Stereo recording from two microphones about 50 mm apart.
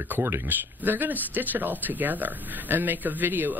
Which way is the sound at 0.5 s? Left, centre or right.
Right.